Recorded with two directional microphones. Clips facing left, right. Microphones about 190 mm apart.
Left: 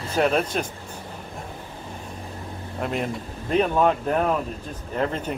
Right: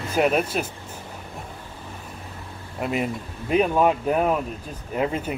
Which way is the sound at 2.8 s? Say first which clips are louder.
Right 2 dB; 5° right (ahead or behind).